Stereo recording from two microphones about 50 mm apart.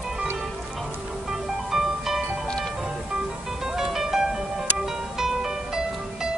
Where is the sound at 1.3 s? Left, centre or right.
Centre.